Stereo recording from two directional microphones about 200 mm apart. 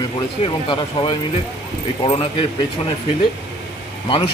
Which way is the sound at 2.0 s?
25° left (ahead or behind).